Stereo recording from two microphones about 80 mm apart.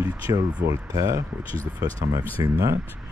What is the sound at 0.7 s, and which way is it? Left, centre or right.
Speech, right.